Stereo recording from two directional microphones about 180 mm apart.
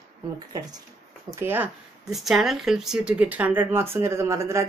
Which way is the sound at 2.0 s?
Centre (ahead or behind).